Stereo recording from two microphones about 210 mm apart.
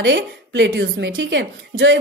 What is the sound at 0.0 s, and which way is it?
A woman's voice, 60° right (ahead or behind).